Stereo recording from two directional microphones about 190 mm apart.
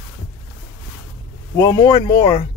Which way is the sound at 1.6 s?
20° left (ahead or behind).